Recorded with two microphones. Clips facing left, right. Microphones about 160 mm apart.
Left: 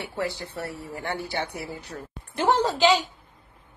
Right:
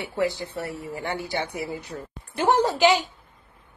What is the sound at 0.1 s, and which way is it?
Speech, 15° right (ahead or behind).